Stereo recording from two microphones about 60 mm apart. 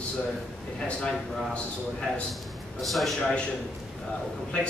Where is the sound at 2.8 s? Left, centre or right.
Centre.